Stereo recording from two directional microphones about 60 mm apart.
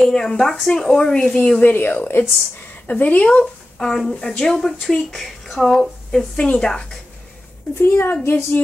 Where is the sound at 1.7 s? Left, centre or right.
Left.